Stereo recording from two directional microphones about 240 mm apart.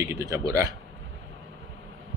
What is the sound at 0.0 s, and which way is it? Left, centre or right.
Speech, centre.